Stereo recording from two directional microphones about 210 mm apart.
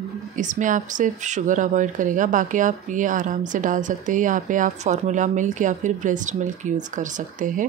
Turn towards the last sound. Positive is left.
turn(degrees=-35)  # may be behind; listen again after turning